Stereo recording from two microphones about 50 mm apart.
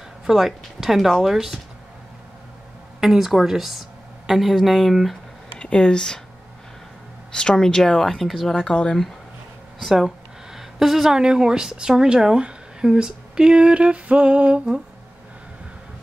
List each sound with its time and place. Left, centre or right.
0.3 s speech: centre
3.0 s speech: centre
5.6 s speech: centre
7.3 s speech: centre
9.8 s a sound: centre
11.1 s speech: centre